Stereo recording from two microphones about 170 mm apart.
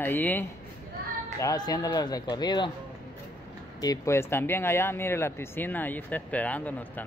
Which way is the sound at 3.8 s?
20° left (ahead or behind).